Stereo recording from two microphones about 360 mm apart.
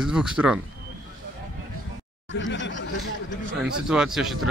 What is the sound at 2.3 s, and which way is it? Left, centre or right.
Speech, left.